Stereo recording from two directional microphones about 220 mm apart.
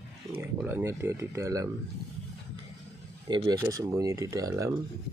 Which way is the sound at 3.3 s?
15° right (ahead or behind).